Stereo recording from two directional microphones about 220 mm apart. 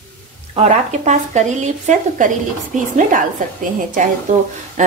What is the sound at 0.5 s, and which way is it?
A woman's voice, 30° right (ahead or behind).